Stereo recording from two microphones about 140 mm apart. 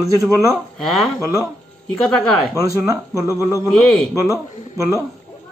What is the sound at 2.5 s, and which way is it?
Speech, 25° right (ahead or behind).